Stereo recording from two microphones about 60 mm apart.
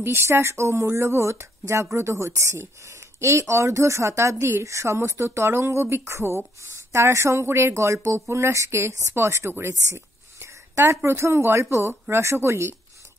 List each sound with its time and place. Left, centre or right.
0.0 s speech: right